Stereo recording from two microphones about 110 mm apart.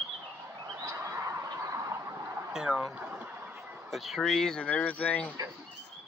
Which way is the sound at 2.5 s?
5° right (ahead or behind).